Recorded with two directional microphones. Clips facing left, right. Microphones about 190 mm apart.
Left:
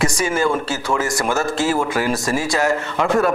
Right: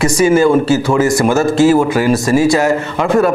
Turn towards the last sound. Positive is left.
turn(degrees=-10)  # may be behind; listen again after turning